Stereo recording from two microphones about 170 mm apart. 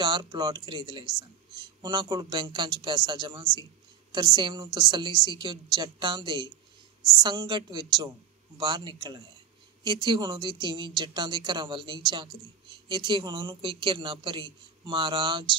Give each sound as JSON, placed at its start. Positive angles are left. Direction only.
{"t": 0.0, "sound": "speech", "side_deg": -25}